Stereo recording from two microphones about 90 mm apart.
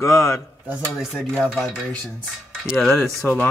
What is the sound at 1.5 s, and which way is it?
Cutlery, 5° left (ahead or behind).